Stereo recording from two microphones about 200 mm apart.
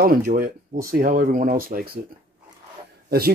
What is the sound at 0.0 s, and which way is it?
Speech, 45° right (ahead or behind).